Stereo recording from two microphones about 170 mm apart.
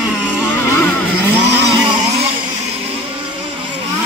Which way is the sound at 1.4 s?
90° right.